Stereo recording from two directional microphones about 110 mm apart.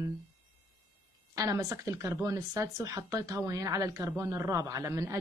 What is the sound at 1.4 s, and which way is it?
Speech, 30° right (ahead or behind).